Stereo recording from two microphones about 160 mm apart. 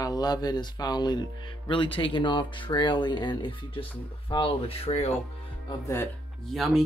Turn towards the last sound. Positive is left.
turn(degrees=0)  # may be behind; listen again after turning